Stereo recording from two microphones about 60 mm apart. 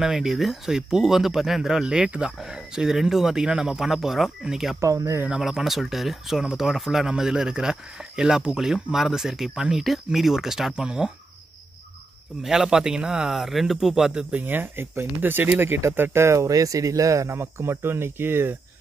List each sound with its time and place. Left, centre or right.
0.0 s speech: centre
4.7 s speech: right
5.3 s speech: centre
12.4 s speech: centre
14.4 s speech: right